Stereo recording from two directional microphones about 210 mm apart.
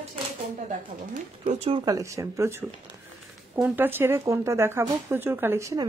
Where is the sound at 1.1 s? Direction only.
35° right (ahead or behind).